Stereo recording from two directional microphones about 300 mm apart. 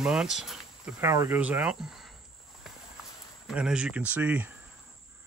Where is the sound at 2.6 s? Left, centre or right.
Centre.